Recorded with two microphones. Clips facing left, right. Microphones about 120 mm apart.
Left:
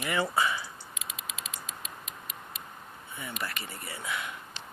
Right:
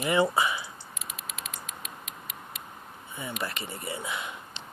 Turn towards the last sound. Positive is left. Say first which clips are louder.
# right 1 dB
turn(degrees=-20)  # may be behind; listen again after turning